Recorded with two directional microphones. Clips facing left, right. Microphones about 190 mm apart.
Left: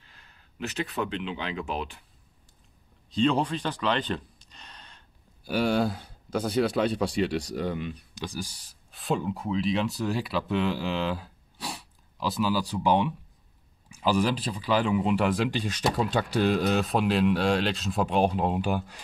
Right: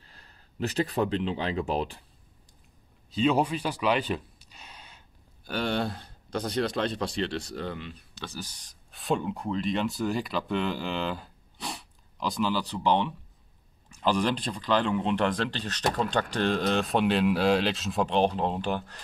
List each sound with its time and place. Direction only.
0.0 s speech: 35° right (ahead or behind)
3.1 s a sound: 5° right (ahead or behind)
5.4 s speech: 5° left (ahead or behind)